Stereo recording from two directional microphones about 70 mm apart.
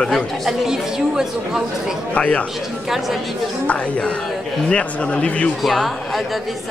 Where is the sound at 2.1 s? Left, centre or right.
Centre.